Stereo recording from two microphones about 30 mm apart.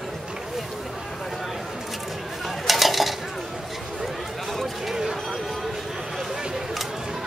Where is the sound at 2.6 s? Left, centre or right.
Centre.